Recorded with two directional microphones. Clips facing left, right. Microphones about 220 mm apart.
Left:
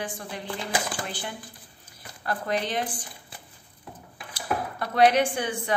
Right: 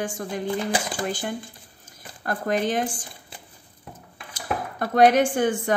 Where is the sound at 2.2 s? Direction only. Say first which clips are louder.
Right 4 dB; 45° right (ahead or behind).